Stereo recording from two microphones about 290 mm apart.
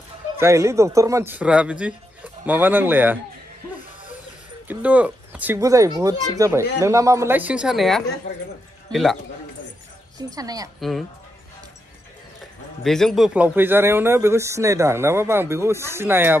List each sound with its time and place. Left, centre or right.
0.4 s a man's voice: centre
4.6 s a man's voice: centre
10.1 s a man's voice: centre
10.8 s a man's voice: centre
12.8 s a man's voice: centre